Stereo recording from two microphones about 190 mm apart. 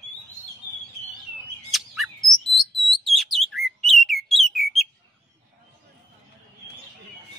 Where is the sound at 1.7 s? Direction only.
Centre (ahead or behind).